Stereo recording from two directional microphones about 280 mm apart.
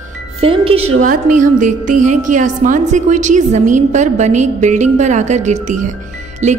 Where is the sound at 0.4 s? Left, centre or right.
Centre.